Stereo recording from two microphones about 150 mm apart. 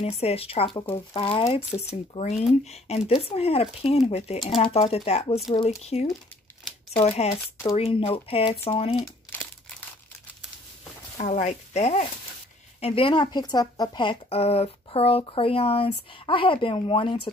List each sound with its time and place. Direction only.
0.0 s speech: 40° left (ahead or behind)
1.5 s speech: 45° left (ahead or behind)
11.1 s speech: 55° left (ahead or behind)
12.8 s speech: 35° left (ahead or behind)